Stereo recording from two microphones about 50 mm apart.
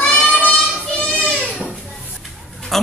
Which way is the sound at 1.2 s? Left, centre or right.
Centre.